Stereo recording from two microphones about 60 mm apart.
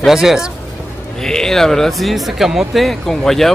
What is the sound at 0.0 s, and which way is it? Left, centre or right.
Speech, centre.